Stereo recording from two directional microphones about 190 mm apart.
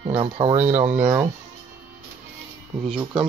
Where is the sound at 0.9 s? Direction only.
10° right (ahead or behind).